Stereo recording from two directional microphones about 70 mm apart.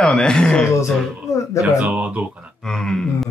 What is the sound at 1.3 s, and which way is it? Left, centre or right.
Speech, left.